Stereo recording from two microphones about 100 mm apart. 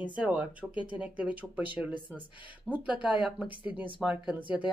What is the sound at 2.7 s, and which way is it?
Speech, 15° right (ahead or behind).